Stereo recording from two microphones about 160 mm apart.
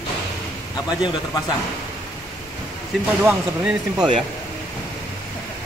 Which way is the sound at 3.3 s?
10° right (ahead or behind).